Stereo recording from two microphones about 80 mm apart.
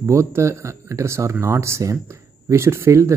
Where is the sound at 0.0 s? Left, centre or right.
Right.